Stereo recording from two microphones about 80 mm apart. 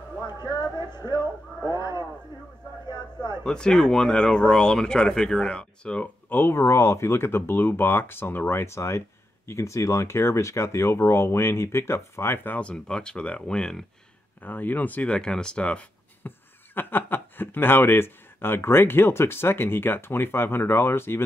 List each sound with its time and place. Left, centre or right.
0.2 s speech: left
3.4 s speech: centre
6.2 s speech: left
12.5 s speech: centre
14.4 s speech: left
16.3 s speech: left